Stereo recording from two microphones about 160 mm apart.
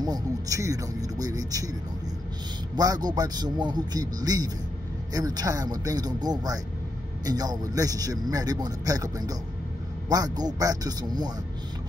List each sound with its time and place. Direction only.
0.0 s a man's voice: 20° right (ahead or behind)